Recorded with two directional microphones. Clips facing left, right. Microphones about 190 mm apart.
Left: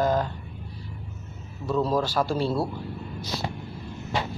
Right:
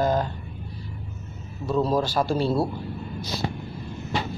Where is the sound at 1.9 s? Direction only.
20° right (ahead or behind).